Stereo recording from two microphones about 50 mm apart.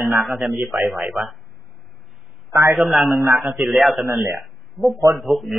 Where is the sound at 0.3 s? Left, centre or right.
Centre.